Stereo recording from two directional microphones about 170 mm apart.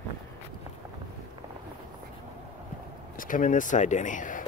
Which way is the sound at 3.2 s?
50° left (ahead or behind).